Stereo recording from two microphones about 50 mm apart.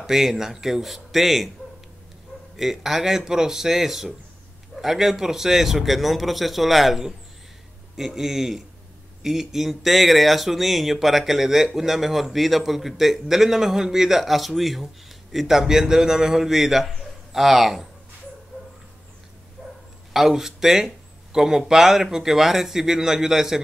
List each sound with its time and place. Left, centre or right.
0.0 s speech: centre
2.5 s speech: centre
19.6 s bow-wow: centre
20.1 s speech: centre